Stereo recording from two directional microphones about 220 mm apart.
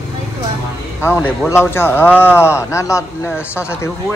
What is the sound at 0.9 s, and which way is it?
A man's voice, 10° left (ahead or behind).